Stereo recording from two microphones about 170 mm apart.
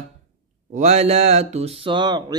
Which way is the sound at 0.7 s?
40° right (ahead or behind).